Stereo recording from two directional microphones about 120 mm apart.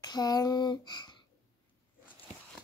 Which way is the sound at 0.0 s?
35° left (ahead or behind).